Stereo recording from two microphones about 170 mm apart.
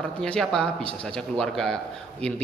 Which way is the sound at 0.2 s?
5° left (ahead or behind).